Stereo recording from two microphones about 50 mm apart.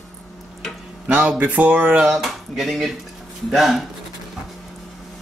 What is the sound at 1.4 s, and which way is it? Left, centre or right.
Speech, right.